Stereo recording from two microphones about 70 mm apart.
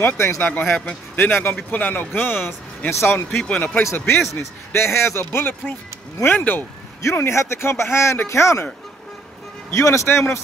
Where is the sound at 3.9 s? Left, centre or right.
Left.